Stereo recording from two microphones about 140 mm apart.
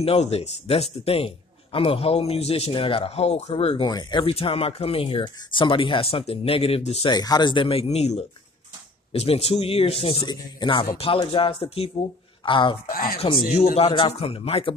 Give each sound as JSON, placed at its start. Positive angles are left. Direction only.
{"t": 0.0, "sound": "a man's voice", "side_deg": 45}
{"t": 7.1, "sound": "a man's voice", "side_deg": 30}
{"t": 10.2, "sound": "speech", "side_deg": 30}
{"t": 12.9, "sound": "speech", "side_deg": 90}
{"t": 13.2, "sound": "a man's voice", "side_deg": 45}